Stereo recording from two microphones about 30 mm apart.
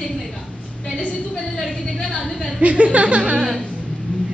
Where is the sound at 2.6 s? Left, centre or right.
Right.